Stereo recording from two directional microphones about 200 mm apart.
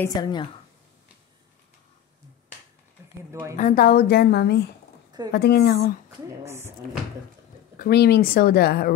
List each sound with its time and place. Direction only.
0.0 s a woman's voice: 20° left (ahead or behind)
3.5 s a woman's voice: 40° left (ahead or behind)
6.0 s a woman's voice: 15° right (ahead or behind)
7.8 s a woman's voice: 50° left (ahead or behind)